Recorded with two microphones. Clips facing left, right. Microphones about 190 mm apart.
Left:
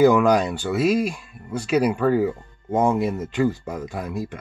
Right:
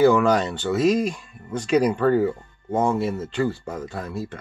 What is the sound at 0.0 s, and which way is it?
Speech, 15° left (ahead or behind).